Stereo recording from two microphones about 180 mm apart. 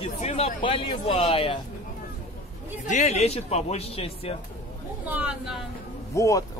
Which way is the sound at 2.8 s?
40° left (ahead or behind).